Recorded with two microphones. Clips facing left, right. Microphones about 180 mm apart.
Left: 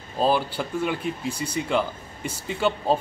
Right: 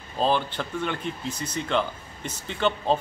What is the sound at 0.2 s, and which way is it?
Speech, 10° left (ahead or behind).